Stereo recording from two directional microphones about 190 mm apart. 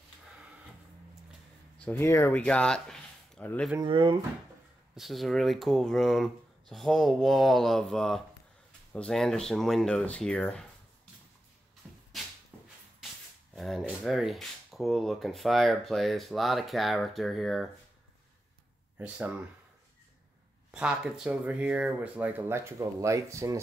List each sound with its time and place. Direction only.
1.8 s speech: 10° left (ahead or behind)
3.8 s speech: 25° right (ahead or behind)
4.9 s speech: centre (ahead or behind)
11.8 s a sound: centre (ahead or behind)
13.6 s speech: centre (ahead or behind)
18.9 s speech: 10° right (ahead or behind)
20.7 s speech: 5° right (ahead or behind)